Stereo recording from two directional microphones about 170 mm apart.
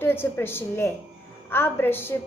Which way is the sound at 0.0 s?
15° left (ahead or behind).